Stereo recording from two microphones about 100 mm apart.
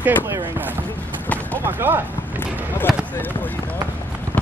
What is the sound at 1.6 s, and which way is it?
Speech, 20° right (ahead or behind).